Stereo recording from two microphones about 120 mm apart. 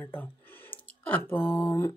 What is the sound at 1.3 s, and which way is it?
Speech, 15° left (ahead or behind).